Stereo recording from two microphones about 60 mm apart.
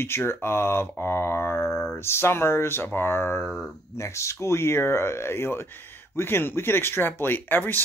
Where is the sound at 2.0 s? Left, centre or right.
Left.